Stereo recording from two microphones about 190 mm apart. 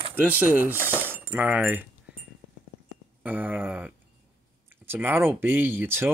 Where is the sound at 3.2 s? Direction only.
10° right (ahead or behind).